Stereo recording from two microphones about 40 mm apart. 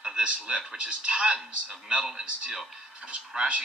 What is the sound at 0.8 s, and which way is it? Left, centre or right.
Speech, right.